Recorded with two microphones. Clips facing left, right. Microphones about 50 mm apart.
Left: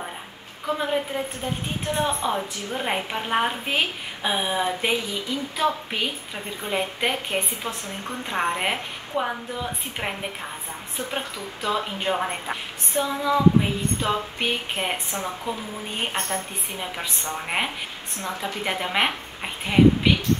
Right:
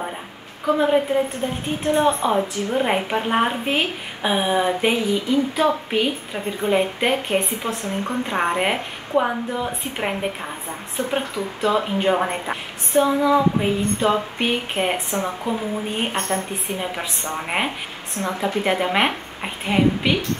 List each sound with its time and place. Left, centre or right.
0.7 s a woman's voice: centre
7.6 s a woman's voice: centre
11.0 s a woman's voice: centre
13.0 s female singing: right
13.6 s a woman's voice: centre
15.5 s female singing: centre
16.0 s a woman's voice: centre
16.3 s a woman's voice: centre
18.4 s female singing: centre
18.7 s a woman's voice: centre